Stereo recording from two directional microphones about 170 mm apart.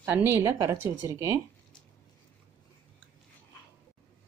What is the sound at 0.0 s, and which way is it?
Speech, 15° right (ahead or behind).